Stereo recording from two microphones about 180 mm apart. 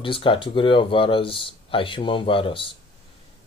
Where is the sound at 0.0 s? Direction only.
30° left (ahead or behind).